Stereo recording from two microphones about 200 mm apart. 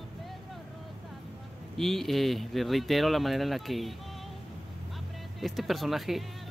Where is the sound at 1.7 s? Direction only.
Centre (ahead or behind).